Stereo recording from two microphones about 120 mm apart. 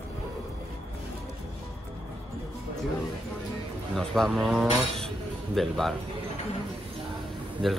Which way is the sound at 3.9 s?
Centre (ahead or behind).